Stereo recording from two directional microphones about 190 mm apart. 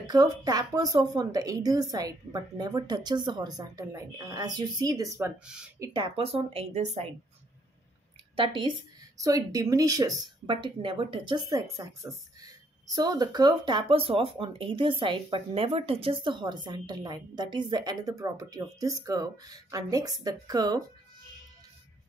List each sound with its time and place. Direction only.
0.1 s speech: 20° right (ahead or behind)
5.4 s speech: 5° right (ahead or behind)
5.8 s a woman's voice: 25° right (ahead or behind)
9.2 s speech: 20° right (ahead or behind)